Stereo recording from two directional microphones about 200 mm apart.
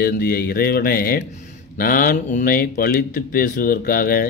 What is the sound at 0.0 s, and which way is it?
Speech, 50° left (ahead or behind).